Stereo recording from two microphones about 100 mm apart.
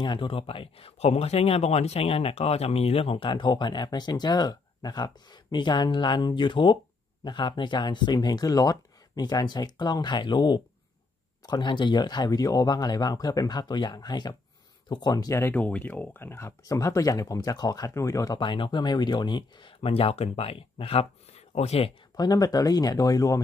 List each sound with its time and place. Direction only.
0.0 s speech: 55° left (ahead or behind); by 15.4 s 35° left (ahead or behind)
15.4 s speech: 15° left (ahead or behind); by 18.4 s 35° left (ahead or behind)
18.4 s speech: 55° left (ahead or behind)
19.8 s speech: 75° left (ahead or behind)
22.1 s speech: 40° left (ahead or behind)